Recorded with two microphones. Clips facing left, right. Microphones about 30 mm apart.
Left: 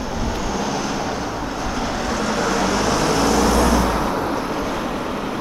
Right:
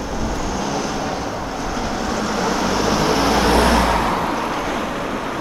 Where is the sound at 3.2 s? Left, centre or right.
Right.